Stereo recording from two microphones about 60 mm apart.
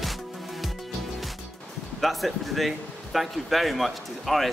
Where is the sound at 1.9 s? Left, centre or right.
Centre.